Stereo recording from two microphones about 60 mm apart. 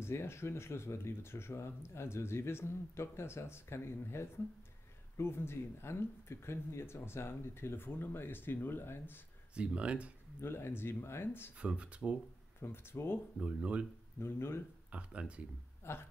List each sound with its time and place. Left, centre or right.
0.0 s speech: left
9.6 s speech: centre
10.4 s speech: left
11.6 s speech: centre
12.5 s speech: left
13.4 s speech: centre
14.2 s speech: left
14.9 s speech: centre
15.8 s speech: left